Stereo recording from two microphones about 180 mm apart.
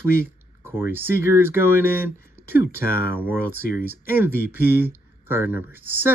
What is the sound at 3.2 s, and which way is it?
Speech, 10° right (ahead or behind).